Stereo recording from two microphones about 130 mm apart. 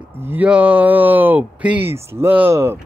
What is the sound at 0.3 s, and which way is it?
Speech, 10° right (ahead or behind).